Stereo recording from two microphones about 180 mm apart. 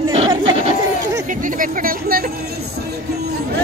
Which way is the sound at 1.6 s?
55° right (ahead or behind).